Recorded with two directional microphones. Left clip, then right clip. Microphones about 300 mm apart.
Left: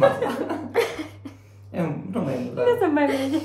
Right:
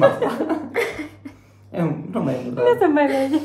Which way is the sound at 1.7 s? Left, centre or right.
Right.